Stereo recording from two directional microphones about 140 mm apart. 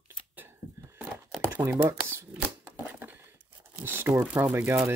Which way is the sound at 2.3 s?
10° right (ahead or behind).